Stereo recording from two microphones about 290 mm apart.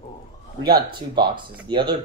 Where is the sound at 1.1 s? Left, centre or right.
Centre.